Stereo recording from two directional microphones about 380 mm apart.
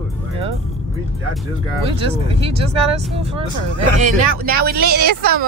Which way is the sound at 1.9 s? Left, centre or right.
Centre.